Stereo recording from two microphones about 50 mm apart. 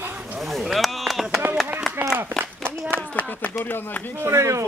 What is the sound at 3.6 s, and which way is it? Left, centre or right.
Speech, left.